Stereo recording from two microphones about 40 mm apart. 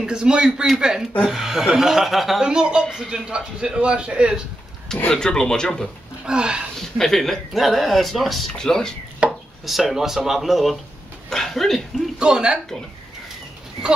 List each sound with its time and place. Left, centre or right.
0.0 s a man's voice: centre
2.4 s a man's voice: right
5.1 s speech: centre
6.2 s a man's voice: right
6.8 s speech: centre
8.5 s speech: centre
9.2 s chopping: right
9.7 s speech: centre
11.2 s speech: centre
12.2 s a man's voice: right